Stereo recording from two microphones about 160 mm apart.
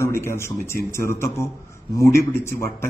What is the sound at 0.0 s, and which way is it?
A man's voice, 15° left (ahead or behind).